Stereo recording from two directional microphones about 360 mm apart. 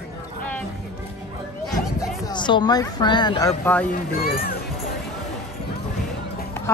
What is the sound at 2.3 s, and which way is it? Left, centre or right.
Speech, centre.